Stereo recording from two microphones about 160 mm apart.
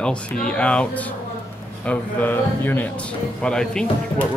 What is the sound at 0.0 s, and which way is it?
Speech, 5° left (ahead or behind).